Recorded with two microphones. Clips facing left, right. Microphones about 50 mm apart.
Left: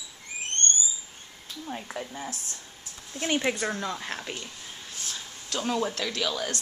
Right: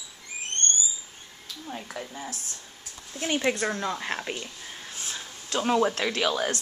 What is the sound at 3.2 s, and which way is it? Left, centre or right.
Speech, centre.